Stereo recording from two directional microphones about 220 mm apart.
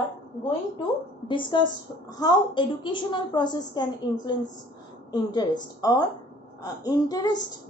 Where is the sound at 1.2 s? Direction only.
20° left (ahead or behind).